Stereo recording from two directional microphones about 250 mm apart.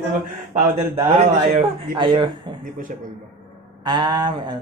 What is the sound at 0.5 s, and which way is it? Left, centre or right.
Speech, centre.